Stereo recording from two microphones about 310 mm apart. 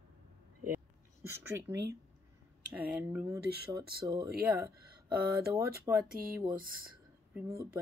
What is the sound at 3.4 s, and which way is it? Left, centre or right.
Speech, right.